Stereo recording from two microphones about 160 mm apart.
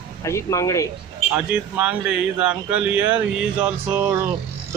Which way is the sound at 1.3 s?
10° right (ahead or behind).